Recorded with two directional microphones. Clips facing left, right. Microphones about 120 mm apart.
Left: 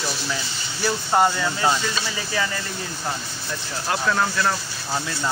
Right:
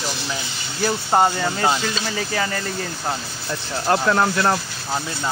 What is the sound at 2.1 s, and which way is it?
Speech, 50° right (ahead or behind).